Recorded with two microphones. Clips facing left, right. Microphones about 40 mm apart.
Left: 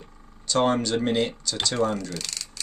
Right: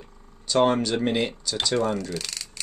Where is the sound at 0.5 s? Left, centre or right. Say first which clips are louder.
Right 1 dB; centre.